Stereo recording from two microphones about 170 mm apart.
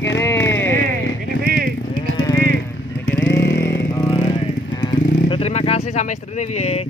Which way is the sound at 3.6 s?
15° left (ahead or behind).